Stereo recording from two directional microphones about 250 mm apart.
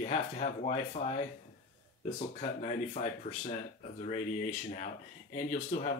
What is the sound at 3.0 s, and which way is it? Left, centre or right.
Speech, left.